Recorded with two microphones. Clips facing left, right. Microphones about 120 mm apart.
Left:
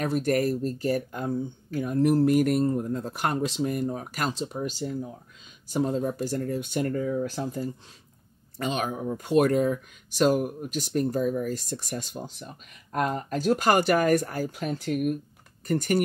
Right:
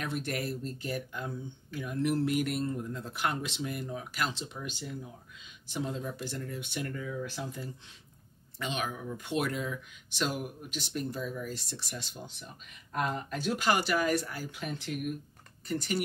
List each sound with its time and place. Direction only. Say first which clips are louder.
0.0 s speech: left 10 dB; 40° left (ahead or behind)